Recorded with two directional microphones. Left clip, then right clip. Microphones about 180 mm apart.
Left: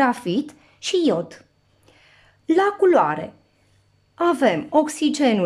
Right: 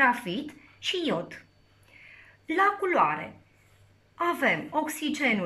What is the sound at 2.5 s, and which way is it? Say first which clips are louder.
A woman's voice: left 8 dB; 40° left (ahead or behind).